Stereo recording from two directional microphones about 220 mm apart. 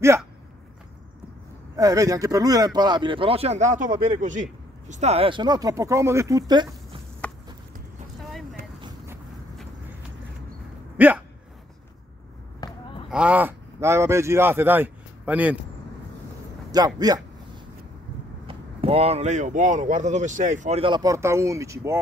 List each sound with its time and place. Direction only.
1.8 s speech: 15° right (ahead or behind)
8.8 s vehicle: 10° right (ahead or behind)
11.0 s a sound: 10° right (ahead or behind)
12.6 s basketball bounce: 15° left (ahead or behind)
13.1 s speech: 5° right (ahead or behind)
16.7 s a man's voice: 15° right (ahead or behind)
18.5 s speech: 25° right (ahead or behind)